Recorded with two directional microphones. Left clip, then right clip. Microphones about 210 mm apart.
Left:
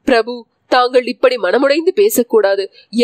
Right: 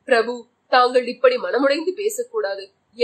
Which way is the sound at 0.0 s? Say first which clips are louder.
Left 5 dB; 45° left (ahead or behind).